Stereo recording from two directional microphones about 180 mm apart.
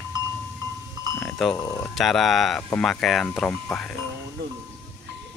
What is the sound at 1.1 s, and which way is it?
Sheep, 5° left (ahead or behind).